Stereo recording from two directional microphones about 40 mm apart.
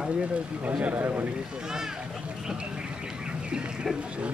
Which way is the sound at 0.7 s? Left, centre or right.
Right.